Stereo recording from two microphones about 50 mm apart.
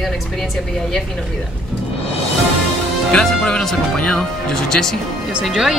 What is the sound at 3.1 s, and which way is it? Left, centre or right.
Speech, centre.